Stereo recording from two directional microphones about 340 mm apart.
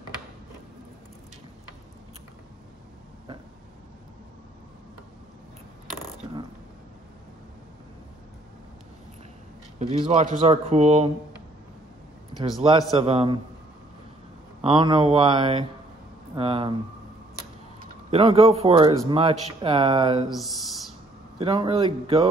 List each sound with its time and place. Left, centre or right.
6.2 s a sound: centre
9.9 s a man's voice: centre
12.6 s a man's voice: centre
14.6 s a man's voice: centre
18.1 s a man's voice: centre
21.4 s a man's voice: centre